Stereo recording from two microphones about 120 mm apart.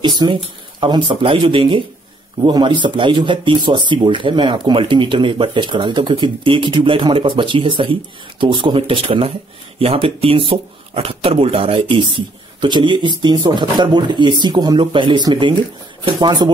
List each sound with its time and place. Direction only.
0.0 s speech: 35° right (ahead or behind)